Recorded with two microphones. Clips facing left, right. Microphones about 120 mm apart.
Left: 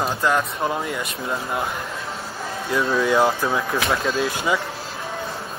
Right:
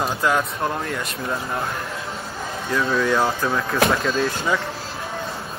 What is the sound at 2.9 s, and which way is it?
Speech, 10° left (ahead or behind).